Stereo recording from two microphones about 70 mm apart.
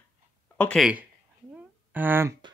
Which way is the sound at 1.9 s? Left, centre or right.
Right.